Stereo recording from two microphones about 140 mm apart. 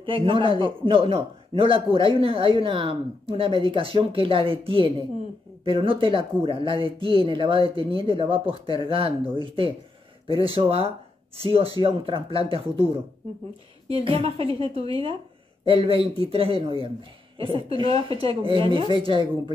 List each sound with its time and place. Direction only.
0.0 s a man's voice: 40° right (ahead or behind)
13.8 s a woman's voice: 45° right (ahead or behind)